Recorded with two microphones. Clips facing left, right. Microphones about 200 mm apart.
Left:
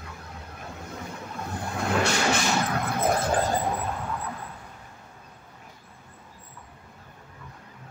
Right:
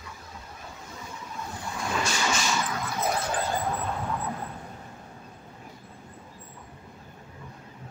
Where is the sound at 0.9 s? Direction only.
60° left (ahead or behind).